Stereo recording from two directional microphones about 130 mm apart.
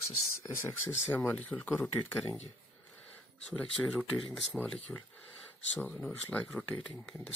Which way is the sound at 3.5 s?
10° left (ahead or behind).